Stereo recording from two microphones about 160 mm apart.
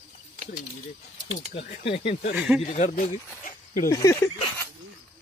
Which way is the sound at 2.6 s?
45° left (ahead or behind).